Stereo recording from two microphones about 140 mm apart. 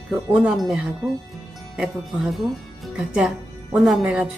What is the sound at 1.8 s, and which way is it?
Speech, centre (ahead or behind).